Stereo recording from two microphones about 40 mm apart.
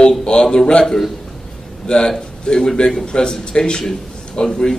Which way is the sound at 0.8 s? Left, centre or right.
Centre.